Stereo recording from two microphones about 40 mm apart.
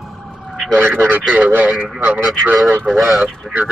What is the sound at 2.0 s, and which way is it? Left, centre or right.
Speech, right.